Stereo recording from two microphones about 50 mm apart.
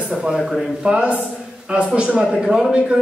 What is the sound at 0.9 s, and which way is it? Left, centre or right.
Speech, right.